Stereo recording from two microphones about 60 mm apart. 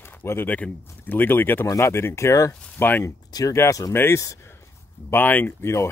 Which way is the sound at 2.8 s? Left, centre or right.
Left.